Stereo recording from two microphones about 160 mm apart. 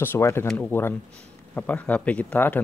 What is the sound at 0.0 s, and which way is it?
A man's voice, 15° left (ahead or behind).